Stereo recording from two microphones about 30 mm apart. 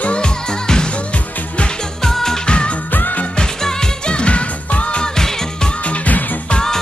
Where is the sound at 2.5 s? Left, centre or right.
Left.